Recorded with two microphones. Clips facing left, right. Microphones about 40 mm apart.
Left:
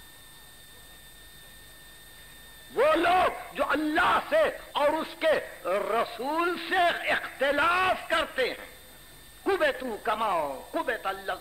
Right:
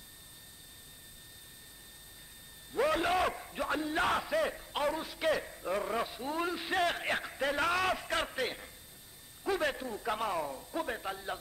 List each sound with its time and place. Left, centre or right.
2.7 s a man's voice: left